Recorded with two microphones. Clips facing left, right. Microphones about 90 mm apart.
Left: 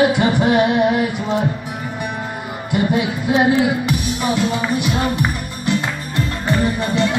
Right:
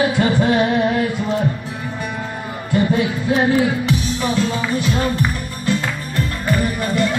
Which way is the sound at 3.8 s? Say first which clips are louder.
Even; 15° left (ahead or behind).